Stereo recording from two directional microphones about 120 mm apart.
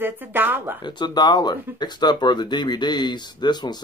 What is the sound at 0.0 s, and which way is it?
Speech, 15° right (ahead or behind).